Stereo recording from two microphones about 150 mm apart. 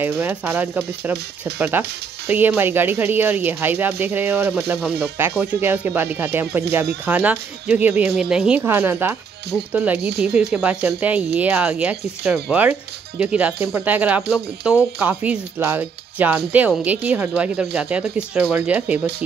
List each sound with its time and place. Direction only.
0.2 s speech: 15° right (ahead or behind)
9.9 s speech: 90° right
10.5 s speech: 10° right (ahead or behind)